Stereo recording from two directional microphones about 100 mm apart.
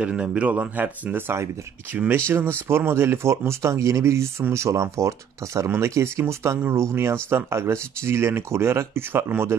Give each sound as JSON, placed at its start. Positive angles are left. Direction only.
{"t": 0.0, "sound": "speech", "side_deg": -10}
{"t": 2.7, "sound": "speech", "side_deg": -25}